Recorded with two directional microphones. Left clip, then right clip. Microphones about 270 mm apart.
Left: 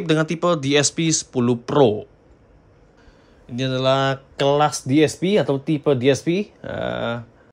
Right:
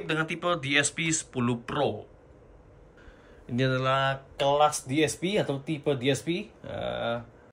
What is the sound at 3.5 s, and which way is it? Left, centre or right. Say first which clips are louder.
Speech: left 3 dB; centre.